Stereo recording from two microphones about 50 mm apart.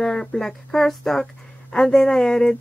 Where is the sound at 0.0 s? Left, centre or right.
Centre.